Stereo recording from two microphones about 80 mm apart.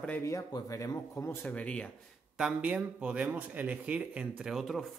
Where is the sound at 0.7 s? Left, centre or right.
Left.